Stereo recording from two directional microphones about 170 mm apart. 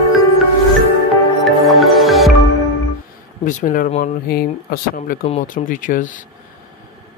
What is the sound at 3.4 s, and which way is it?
Speech, 50° left (ahead or behind).